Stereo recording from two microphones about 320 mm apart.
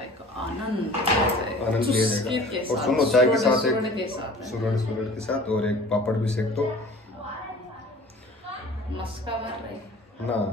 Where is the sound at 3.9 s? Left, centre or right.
Centre.